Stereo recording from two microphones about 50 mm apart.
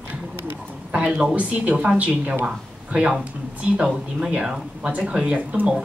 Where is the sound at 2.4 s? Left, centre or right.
Centre.